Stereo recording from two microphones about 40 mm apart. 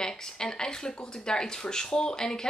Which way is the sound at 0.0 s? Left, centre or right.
Centre.